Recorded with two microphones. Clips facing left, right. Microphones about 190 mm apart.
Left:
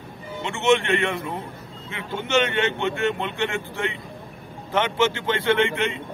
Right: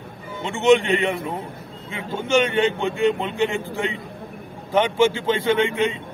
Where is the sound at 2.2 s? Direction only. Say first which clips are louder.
Right 3 dB; 15° right (ahead or behind).